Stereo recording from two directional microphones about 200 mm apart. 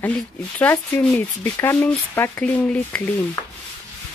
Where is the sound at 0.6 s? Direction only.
10° left (ahead or behind).